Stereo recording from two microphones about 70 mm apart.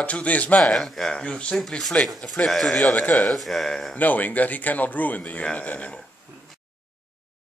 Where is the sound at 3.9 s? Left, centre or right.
Left.